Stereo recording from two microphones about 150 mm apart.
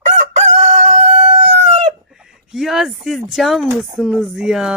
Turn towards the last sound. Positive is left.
turn(degrees=-5)  # may be behind; listen again after turning